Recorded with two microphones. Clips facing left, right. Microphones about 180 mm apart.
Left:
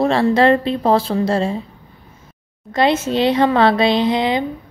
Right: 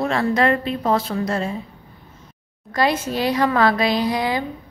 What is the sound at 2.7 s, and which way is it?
A woman's voice, 25° left (ahead or behind).